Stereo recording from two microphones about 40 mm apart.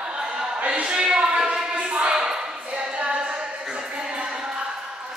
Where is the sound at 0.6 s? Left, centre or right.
Right.